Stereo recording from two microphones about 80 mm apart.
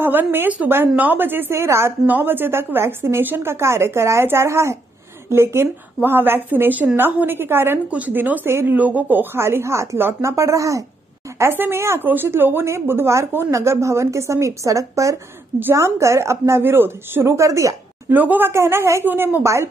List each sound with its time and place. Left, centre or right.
0.0 s a woman's voice: right
2.0 s a woman's voice: right
11.3 s a woman's voice: right
18.1 s a woman's voice: right
18.5 s a woman's voice: right